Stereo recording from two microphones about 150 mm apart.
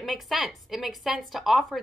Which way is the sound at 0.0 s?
Centre (ahead or behind).